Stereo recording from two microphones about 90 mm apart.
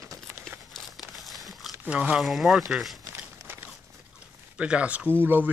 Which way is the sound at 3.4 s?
30° right (ahead or behind).